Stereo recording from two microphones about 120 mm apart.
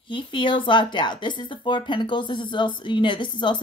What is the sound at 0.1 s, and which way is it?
Speech, 40° left (ahead or behind).